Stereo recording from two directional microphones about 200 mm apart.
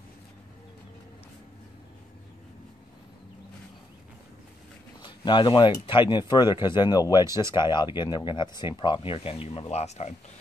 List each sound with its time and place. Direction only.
5.0 s speech: 25° left (ahead or behind)